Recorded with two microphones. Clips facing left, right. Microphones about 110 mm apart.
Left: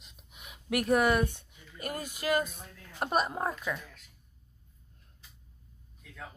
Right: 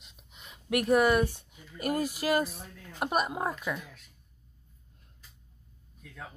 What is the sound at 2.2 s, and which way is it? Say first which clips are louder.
Speech: even; 30° right (ahead or behind).